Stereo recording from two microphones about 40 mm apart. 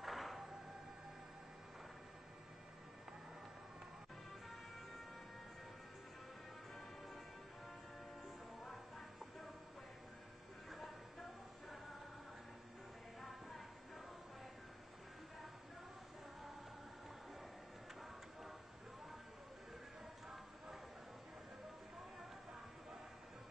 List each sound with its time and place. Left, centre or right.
0.0 s music: centre
8.6 s music: left
13.2 s music: left